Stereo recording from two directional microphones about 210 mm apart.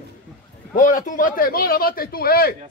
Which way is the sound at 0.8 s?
40° left (ahead or behind).